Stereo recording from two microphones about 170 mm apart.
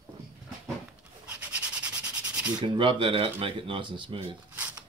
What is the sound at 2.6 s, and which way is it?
Speech, 30° right (ahead or behind).